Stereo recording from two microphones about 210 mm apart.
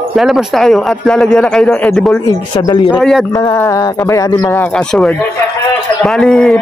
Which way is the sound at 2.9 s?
Centre (ahead or behind).